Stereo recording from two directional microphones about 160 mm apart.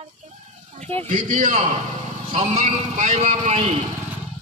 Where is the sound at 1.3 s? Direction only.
55° right (ahead or behind).